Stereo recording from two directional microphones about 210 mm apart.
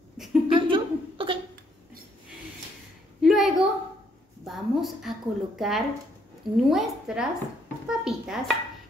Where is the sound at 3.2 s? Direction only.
Centre (ahead or behind).